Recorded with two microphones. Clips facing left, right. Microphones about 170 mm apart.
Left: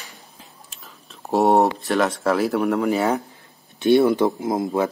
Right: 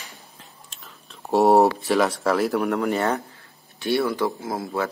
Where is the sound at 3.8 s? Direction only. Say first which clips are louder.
Left 7 dB; 20° left (ahead or behind).